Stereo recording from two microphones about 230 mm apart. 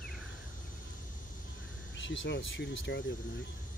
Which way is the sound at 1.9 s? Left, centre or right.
Left.